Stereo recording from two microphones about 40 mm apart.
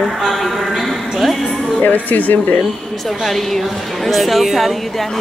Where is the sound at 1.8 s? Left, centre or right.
Left.